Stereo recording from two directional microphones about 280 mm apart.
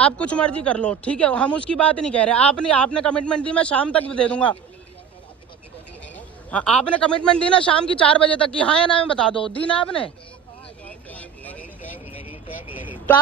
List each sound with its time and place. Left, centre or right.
0.0 s speech: centre
6.1 s a man's voice: centre
10.9 s vehicle: centre
12.3 s vehicle: centre